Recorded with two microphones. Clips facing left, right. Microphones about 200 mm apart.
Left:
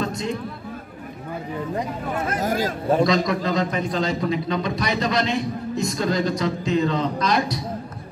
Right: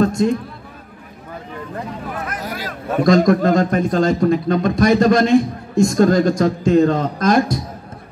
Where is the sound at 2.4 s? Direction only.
45° left (ahead or behind).